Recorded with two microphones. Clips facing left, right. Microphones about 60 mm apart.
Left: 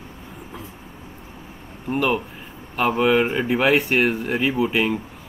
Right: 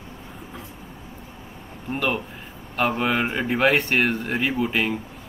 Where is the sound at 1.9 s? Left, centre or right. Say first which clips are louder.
Left 4 dB; centre.